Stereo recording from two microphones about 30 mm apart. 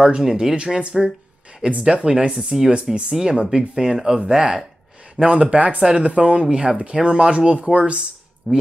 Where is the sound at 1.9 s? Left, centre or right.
Right.